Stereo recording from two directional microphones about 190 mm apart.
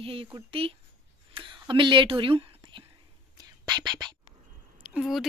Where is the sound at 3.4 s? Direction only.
20° right (ahead or behind).